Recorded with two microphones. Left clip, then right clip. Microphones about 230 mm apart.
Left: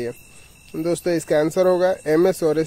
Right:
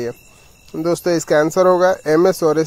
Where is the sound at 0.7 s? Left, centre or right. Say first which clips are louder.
Right 4 dB; centre.